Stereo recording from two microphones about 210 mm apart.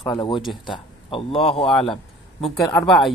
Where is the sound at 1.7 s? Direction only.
Centre (ahead or behind).